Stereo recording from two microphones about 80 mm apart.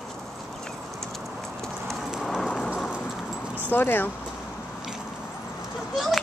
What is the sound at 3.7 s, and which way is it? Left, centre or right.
Speech, left.